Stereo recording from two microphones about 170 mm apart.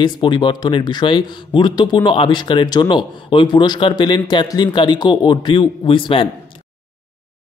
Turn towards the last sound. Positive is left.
turn(degrees=30)  # may be behind; listen again after turning